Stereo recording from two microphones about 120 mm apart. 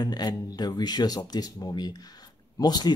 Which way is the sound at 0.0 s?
35° left (ahead or behind).